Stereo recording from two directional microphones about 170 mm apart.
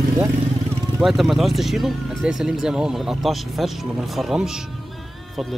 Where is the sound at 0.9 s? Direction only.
Centre (ahead or behind).